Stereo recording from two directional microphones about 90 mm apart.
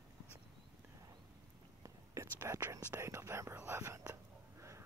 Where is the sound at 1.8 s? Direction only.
35° right (ahead or behind).